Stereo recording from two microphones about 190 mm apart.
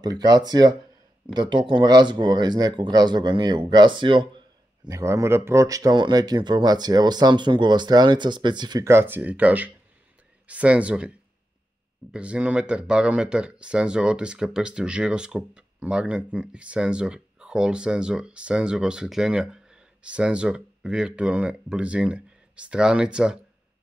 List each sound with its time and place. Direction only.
0.0 s speech: 20° right (ahead or behind)